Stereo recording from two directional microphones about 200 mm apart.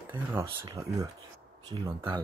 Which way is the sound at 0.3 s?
10° right (ahead or behind).